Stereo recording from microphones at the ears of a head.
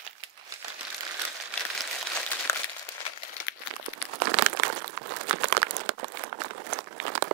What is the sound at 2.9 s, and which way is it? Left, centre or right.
Crumpling, left.